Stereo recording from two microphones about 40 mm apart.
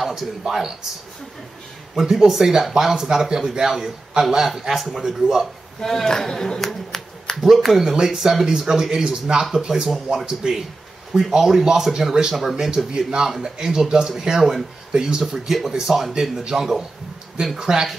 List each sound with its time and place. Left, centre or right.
0.0 s a man's voice: centre
2.0 s a man's voice: centre
5.8 s a woman's voice: centre
7.9 s speech: centre
9.8 s a man's voice: centre
10.4 s a man's voice: centre